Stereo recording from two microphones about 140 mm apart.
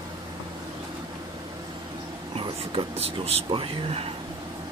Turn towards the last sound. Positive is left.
turn(degrees=-40)  # may be behind; listen again after turning